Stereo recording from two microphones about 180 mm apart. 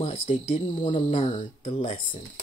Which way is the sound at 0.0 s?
30° left (ahead or behind).